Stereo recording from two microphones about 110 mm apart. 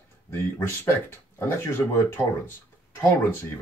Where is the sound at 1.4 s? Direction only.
20° left (ahead or behind).